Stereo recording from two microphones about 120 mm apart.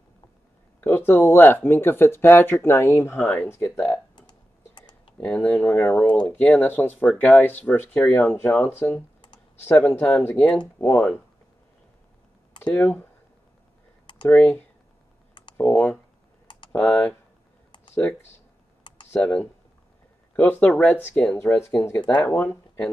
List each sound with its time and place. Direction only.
0.7 s speech: 15° left (ahead or behind)
4.1 s typing: 40° left (ahead or behind)
5.2 s speech: 10° left (ahead or behind)
12.6 s speech: 15° left (ahead or behind)
14.3 s speech: 10° left (ahead or behind)
18.9 s computer keyboard: 40° left (ahead or behind)
20.3 s speech: 15° left (ahead or behind)